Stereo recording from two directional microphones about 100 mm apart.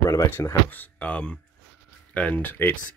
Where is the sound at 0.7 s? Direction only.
15° left (ahead or behind).